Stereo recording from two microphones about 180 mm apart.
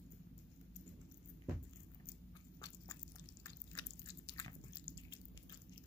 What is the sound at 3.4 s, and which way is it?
Drip, 20° left (ahead or behind).